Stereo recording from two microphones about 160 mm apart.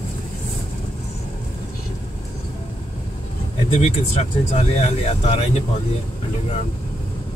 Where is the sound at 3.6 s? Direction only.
40° left (ahead or behind).